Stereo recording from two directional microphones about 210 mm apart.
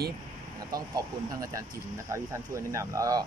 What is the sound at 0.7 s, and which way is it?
Speech, 15° right (ahead or behind).